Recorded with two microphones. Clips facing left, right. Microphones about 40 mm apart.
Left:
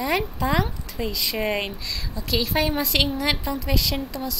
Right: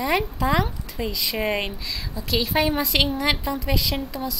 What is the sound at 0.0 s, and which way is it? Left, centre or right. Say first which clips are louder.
A woman's voice: right 1 dB; centre.